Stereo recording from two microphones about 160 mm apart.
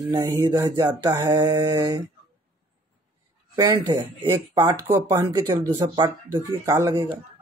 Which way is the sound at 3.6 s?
25° right (ahead or behind).